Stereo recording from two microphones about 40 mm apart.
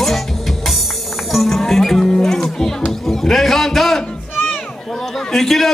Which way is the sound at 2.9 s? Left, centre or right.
Centre.